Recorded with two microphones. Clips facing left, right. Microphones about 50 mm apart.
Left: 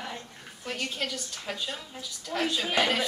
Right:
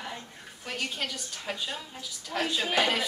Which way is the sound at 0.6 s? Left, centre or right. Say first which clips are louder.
Left 1 dB; centre.